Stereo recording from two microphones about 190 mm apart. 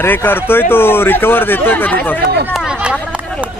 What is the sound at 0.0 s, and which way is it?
Speech, 10° left (ahead or behind).